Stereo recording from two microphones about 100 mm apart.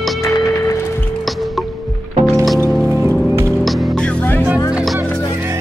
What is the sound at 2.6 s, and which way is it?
Music, 25° right (ahead or behind).